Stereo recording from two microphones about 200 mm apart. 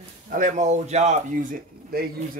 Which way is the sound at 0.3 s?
40° right (ahead or behind).